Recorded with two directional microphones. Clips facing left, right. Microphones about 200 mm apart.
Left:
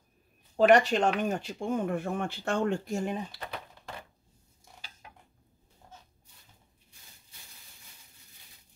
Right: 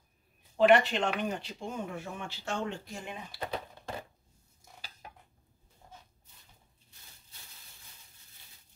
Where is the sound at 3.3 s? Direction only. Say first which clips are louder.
Right 4 dB; 25° right (ahead or behind).